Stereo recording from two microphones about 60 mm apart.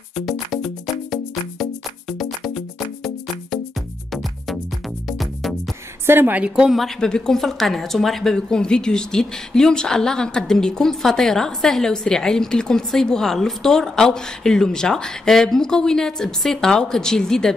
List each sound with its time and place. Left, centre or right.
0.1 s music: centre
5.0 s music: centre
6.0 s a woman's voice: right
6.4 s speech: centre
7.0 s speech: centre